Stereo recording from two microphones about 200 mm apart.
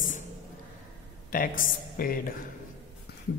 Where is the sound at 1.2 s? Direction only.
45° left (ahead or behind).